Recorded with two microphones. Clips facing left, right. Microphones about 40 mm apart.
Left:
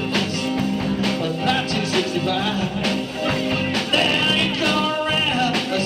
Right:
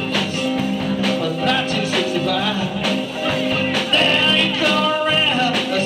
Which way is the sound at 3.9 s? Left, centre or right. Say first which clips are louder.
Right 3 dB; right.